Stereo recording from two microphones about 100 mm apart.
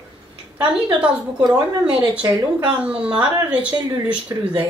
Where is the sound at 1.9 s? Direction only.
10° right (ahead or behind).